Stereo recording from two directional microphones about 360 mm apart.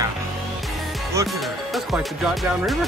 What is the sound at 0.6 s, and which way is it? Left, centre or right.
Music, centre.